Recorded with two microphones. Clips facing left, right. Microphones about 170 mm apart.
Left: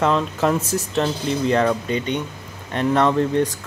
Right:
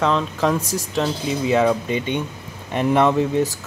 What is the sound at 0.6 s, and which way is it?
Speech, 35° right (ahead or behind).